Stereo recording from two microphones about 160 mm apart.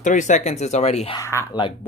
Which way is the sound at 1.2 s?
15° left (ahead or behind).